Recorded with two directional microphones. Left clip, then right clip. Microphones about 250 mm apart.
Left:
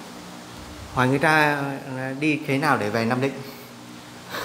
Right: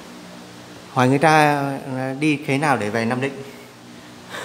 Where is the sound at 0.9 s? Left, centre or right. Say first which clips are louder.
Right 4 dB; right; by 3.3 s centre.